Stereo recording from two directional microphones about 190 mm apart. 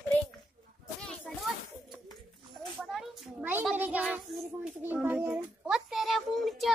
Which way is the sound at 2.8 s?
Centre (ahead or behind).